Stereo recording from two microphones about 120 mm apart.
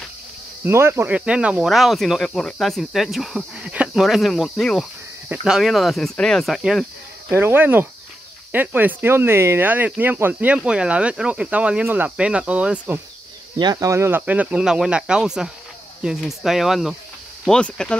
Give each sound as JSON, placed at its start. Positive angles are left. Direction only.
{"t": 0.7, "sound": "speech", "side_deg": -20}
{"t": 7.3, "sound": "speech", "side_deg": -15}
{"t": 13.6, "sound": "speech", "side_deg": -30}